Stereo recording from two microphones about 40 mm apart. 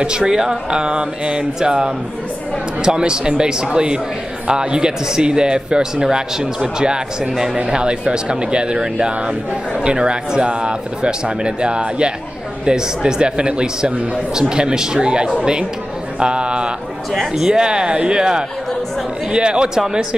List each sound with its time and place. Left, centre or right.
0.0 s speech: right